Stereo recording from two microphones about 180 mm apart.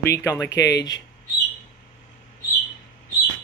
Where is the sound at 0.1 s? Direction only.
15° left (ahead or behind).